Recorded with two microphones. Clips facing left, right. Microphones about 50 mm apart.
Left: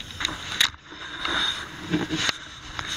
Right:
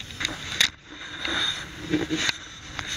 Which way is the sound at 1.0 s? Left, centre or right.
Centre.